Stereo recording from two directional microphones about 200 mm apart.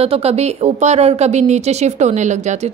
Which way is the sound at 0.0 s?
30° right (ahead or behind).